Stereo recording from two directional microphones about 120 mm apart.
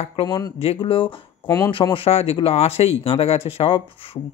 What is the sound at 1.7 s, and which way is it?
Speech, 45° left (ahead or behind).